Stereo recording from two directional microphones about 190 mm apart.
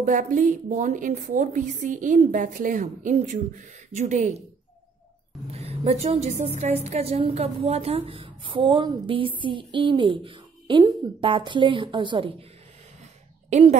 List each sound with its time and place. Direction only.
0.0 s a woman's voice: 45° right (ahead or behind)
5.5 s a woman's voice: 30° right (ahead or behind)
13.5 s a woman's voice: 40° right (ahead or behind)